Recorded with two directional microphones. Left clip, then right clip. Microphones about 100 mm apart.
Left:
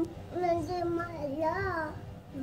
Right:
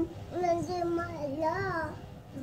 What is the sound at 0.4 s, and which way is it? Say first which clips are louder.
Child singing: even; 25° left (ahead or behind).